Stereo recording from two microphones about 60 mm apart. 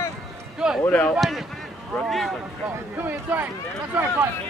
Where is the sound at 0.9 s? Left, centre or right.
Left.